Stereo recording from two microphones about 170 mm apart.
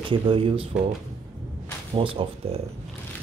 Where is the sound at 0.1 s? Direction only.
30° right (ahead or behind).